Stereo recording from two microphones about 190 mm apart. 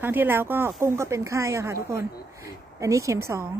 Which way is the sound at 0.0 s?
10° right (ahead or behind).